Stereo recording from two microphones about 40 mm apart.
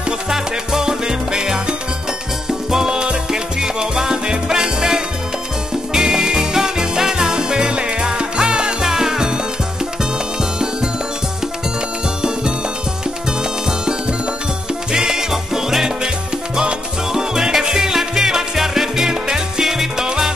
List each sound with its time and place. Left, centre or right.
0.3 s music: centre
14.9 s music: centre